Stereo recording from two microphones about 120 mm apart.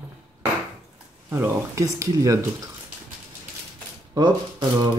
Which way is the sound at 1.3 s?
20° right (ahead or behind).